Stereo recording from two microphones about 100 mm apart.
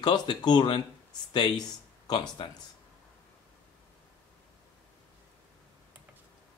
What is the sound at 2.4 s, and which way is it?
Speech, 55° left (ahead or behind).